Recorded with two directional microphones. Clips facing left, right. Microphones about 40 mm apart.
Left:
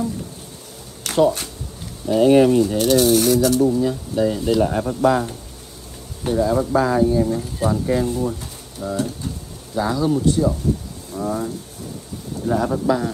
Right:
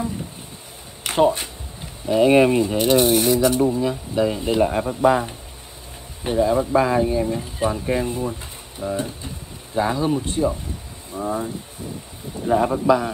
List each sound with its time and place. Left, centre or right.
1.0 s speech: right
11.1 s a sound: right
12.4 s speech: right